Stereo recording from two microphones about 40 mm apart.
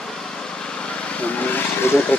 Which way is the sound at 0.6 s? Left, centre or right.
Left.